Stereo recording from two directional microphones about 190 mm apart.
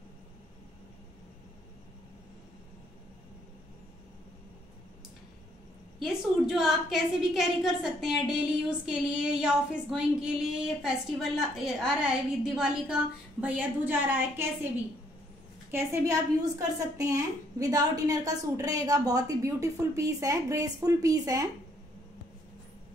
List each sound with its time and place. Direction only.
6.0 s a woman's voice: centre (ahead or behind)
15.7 s a woman's voice: 15° right (ahead or behind)